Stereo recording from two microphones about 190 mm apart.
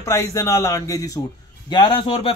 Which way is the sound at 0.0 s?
15° left (ahead or behind).